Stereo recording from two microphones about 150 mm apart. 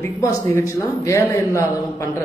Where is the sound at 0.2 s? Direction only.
20° left (ahead or behind).